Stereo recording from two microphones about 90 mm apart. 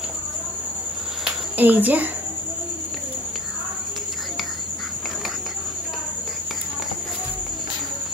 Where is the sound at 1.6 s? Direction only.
20° right (ahead or behind).